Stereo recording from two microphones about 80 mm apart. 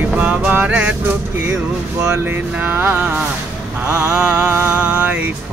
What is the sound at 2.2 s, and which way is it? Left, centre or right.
Speech, right.